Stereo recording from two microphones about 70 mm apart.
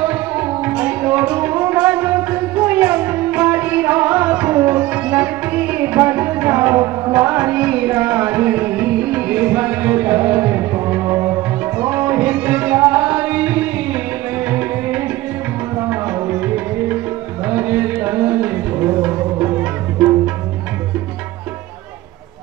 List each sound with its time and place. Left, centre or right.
0.0 s tabla: right
0.7 s music: right